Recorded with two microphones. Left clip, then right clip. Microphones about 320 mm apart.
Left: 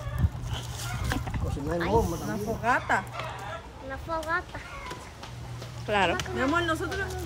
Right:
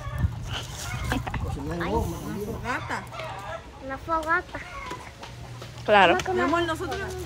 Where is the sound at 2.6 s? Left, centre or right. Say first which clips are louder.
Left 7 dB; centre.